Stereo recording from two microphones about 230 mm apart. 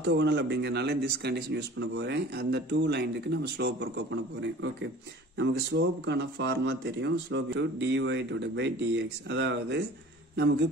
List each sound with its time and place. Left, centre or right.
0.0 s speech: right